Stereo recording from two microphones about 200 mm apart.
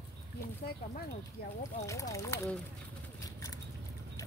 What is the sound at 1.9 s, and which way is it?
Speech, 15° left (ahead or behind).